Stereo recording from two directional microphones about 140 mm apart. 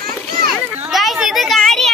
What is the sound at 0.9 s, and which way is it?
Children playing, centre (ahead or behind).